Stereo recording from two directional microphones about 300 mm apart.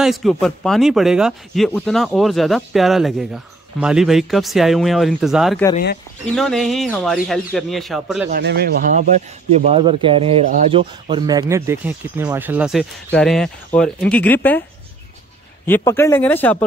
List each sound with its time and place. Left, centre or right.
0.0 s a man's voice: centre
8.3 s speech: right; by 14.6 s centre
15.6 s speech: centre